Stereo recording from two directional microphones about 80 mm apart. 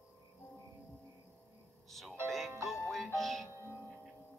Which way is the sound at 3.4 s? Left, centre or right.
Left.